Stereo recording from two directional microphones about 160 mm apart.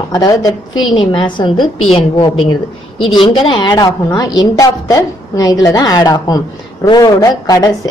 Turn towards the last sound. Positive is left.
turn(degrees=20)  # may be behind; listen again after turning